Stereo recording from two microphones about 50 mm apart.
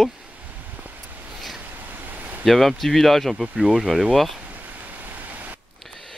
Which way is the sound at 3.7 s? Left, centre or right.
Centre.